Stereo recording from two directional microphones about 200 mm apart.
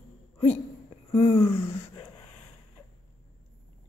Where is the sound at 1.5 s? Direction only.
10° left (ahead or behind).